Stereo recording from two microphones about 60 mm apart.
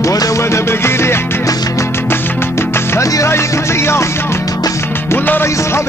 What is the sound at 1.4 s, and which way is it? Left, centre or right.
Music, left.